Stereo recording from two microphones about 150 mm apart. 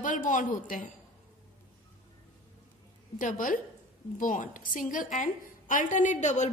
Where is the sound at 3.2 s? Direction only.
60° left (ahead or behind).